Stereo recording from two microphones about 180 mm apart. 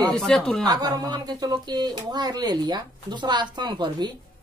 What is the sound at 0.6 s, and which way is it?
Speech, 20° right (ahead or behind).